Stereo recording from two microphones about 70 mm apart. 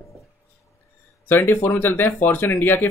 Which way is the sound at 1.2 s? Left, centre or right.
Left.